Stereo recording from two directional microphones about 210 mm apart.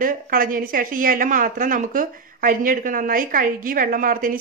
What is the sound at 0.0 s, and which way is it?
A woman's voice, 40° right (ahead or behind).